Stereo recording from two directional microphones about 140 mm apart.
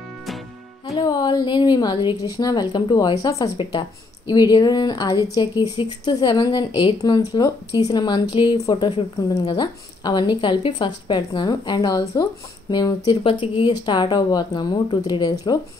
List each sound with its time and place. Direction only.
0.9 s a woman's voice: 30° left (ahead or behind)